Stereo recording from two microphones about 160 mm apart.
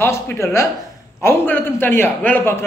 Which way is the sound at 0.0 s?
15° left (ahead or behind).